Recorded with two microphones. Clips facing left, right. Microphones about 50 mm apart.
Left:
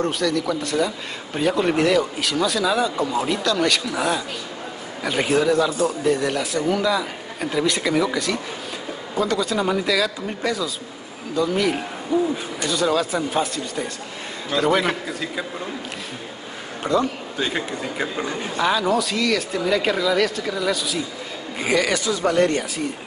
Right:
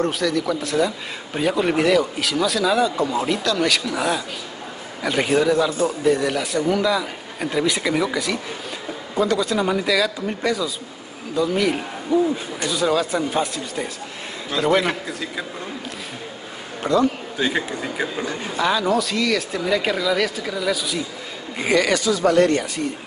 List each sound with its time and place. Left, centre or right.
0.0 s a man's voice: centre
17.4 s a man's voice: centre
22.3 s speech: left